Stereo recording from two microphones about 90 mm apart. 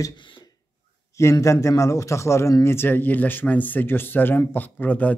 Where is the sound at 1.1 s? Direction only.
35° left (ahead or behind); by 5.1 s 20° left (ahead or behind).